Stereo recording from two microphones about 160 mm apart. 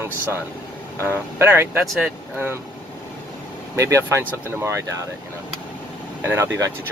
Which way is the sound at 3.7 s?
20° right (ahead or behind).